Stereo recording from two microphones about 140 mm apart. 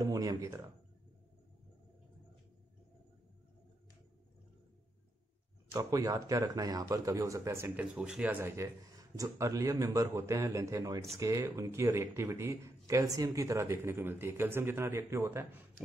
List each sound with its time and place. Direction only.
0.0 s speech: 25° right (ahead or behind)
5.7 s speech: 25° right (ahead or behind)